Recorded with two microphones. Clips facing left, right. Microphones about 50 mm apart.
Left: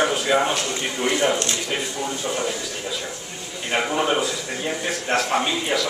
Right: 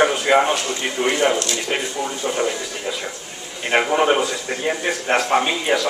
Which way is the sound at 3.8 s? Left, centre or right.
Right.